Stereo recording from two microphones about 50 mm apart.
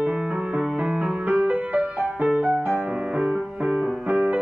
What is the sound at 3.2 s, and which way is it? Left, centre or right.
Music, centre.